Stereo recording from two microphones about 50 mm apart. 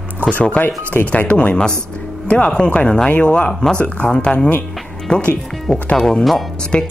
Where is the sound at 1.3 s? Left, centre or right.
Left.